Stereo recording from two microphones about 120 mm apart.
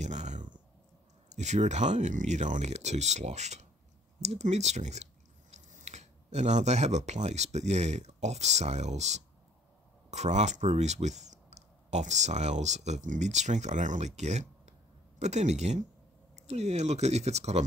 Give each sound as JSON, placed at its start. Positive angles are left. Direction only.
{"t": 0.0, "sound": "a sound", "side_deg": -75}
{"t": 1.3, "sound": "speech", "side_deg": -75}
{"t": 5.5, "sound": "speech", "side_deg": -80}